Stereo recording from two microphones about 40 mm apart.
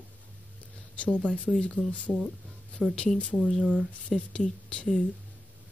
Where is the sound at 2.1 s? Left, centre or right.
Centre.